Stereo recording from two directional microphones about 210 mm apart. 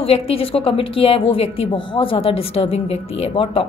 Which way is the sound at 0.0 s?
25° left (ahead or behind).